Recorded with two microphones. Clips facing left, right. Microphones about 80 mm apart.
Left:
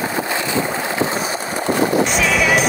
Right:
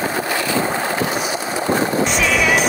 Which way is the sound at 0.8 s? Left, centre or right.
Left.